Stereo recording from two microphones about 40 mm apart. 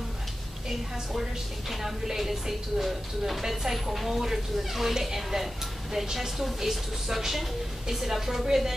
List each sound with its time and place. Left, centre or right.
1.7 s a woman's voice: centre